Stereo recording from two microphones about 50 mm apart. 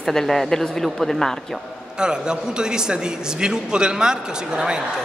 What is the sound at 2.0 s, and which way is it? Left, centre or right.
A man's voice, centre.